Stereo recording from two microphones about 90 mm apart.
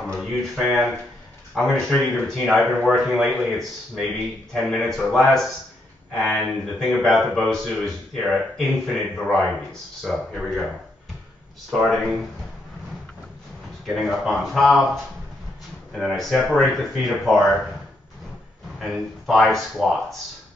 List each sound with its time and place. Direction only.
0.0 s speech: 5° left (ahead or behind)
13.8 s speech: 5° left (ahead or behind)
15.9 s speech: centre (ahead or behind)
18.8 s speech: centre (ahead or behind)